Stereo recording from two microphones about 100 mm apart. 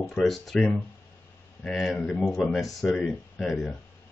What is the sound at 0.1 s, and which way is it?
Speech, centre (ahead or behind).